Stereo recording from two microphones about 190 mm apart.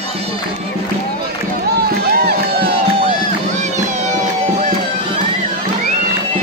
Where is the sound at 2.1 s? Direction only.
55° right (ahead or behind).